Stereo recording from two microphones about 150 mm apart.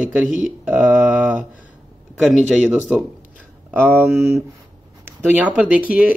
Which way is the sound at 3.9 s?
10° right (ahead or behind).